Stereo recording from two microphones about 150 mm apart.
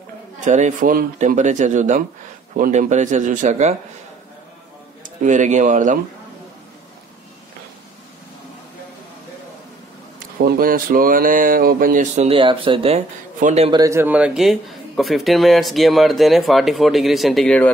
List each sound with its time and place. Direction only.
0.4 s speech: 55° right (ahead or behind)
5.2 s speech: 55° right (ahead or behind)
10.1 s speech: 75° right (ahead or behind); by 12.4 s 50° right (ahead or behind)
12.4 s speech: 35° right (ahead or behind)
13.4 s a man's voice: 55° right (ahead or behind)
13.7 s a man's voice: 25° right (ahead or behind); by 17.7 s 10° left (ahead or behind)